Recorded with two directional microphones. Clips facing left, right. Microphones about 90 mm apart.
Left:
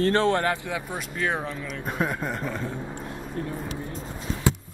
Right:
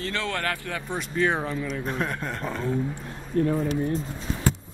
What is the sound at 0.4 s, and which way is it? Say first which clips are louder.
Speech: left 3 dB; 20° left (ahead or behind).